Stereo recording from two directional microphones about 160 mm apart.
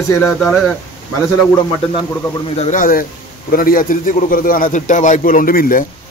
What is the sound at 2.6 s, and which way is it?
A man's voice, 50° left (ahead or behind).